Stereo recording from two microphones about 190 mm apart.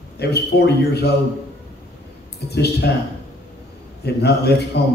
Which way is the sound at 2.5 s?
60° left (ahead or behind).